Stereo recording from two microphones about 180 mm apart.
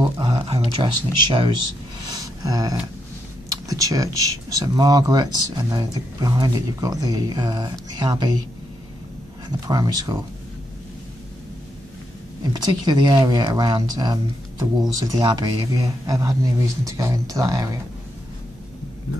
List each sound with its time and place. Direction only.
0.2 s speech: 25° right (ahead or behind)
2.0 s a sound: 20° right (ahead or behind)
3.6 s speech: 20° right (ahead or behind)
9.7 s speech: 20° right (ahead or behind)
12.5 s speech: 25° right (ahead or behind)